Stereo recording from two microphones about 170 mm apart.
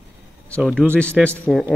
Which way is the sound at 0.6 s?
5° right (ahead or behind).